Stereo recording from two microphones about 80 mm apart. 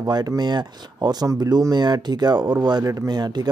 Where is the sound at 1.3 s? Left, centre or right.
Right.